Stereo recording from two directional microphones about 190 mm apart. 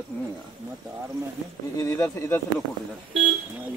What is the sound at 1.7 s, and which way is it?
Speech, 15° left (ahead or behind).